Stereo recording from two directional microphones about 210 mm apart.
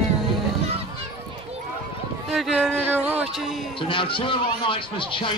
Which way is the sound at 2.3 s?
Centre (ahead or behind).